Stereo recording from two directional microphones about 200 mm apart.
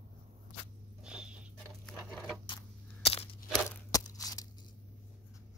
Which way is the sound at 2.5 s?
30° left (ahead or behind).